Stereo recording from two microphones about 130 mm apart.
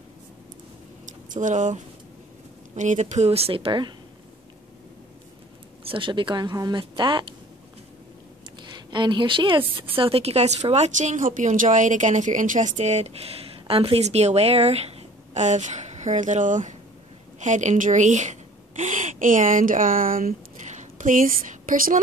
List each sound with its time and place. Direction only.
1.0 s a sound: 75° right (ahead or behind)
2.7 s a woman's voice: 70° right (ahead or behind); by 3.9 s 40° right (ahead or behind)
5.9 s speech: 40° right (ahead or behind)
8.6 s a woman's voice: 35° right (ahead or behind); by 22.0 s 90° right